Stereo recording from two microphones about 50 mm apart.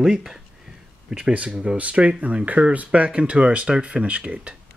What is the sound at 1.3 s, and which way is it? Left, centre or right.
Speech, right.